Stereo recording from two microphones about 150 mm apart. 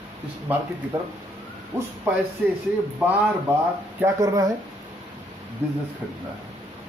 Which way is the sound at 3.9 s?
20° right (ahead or behind).